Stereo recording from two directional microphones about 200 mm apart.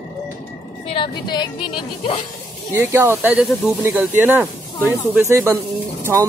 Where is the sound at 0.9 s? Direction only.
20° left (ahead or behind).